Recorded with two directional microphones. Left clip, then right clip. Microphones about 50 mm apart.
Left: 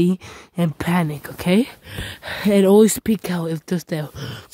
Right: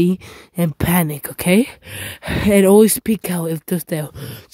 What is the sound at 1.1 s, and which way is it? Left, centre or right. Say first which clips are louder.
Speech: right 3 dB; right.